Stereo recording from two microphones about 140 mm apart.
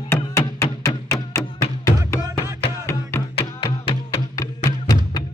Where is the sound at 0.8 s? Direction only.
20° left (ahead or behind).